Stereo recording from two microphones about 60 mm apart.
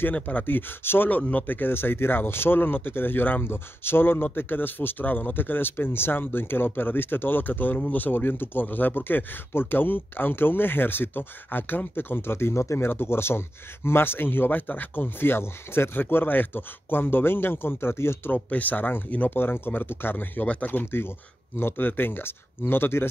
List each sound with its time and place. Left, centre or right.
0.1 s speech: left
18.3 s speech: left
20.8 s speech: left